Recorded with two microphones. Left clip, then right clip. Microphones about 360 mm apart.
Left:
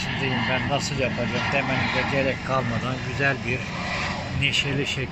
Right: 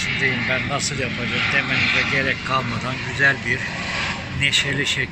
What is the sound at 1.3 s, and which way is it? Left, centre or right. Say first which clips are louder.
Speech: right 4 dB; centre.